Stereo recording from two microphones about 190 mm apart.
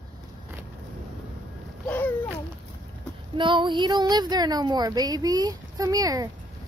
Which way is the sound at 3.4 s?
25° right (ahead or behind).